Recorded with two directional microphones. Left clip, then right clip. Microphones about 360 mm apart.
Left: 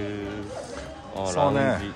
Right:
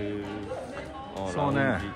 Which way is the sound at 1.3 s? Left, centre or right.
Centre.